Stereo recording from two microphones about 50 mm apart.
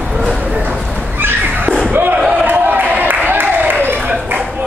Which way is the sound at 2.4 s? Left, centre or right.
Right.